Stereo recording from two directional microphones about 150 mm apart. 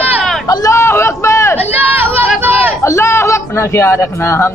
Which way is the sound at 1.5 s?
15° right (ahead or behind).